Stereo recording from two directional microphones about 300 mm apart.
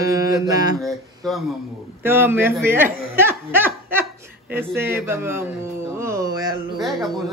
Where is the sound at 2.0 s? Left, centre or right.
Centre.